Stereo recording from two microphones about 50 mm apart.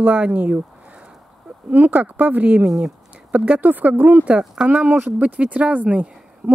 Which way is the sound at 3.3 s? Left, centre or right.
Right.